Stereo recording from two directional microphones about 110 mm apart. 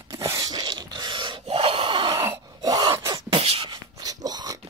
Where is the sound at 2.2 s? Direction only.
35° right (ahead or behind).